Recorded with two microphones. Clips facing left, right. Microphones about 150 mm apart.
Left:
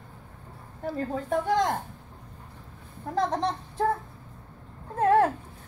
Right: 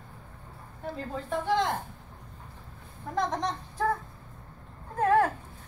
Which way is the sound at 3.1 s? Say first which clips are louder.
Left 3 dB; 30° left (ahead or behind).